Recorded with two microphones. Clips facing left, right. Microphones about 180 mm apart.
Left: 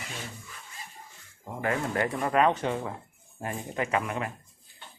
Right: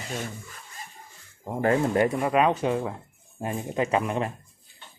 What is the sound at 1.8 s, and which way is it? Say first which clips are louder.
Speech: right 6 dB; 20° right (ahead or behind).